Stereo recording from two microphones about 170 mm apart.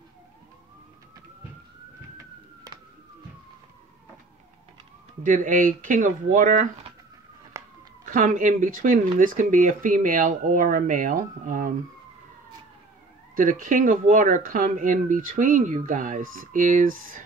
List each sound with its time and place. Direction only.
5.2 s speech: 55° right (ahead or behind)
7.5 s a sound: 20° right (ahead or behind)
8.0 s speech: 50° right (ahead or behind)
13.4 s speech: 50° right (ahead or behind)